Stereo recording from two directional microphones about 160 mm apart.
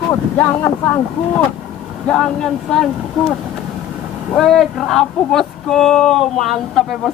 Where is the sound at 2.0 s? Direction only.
5° left (ahead or behind).